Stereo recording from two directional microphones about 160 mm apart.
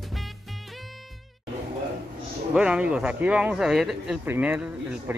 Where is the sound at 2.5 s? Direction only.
5° right (ahead or behind).